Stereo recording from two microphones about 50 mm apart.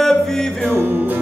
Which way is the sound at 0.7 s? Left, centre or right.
Right.